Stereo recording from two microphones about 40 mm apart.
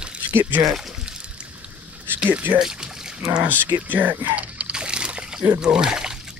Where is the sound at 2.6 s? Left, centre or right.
Centre.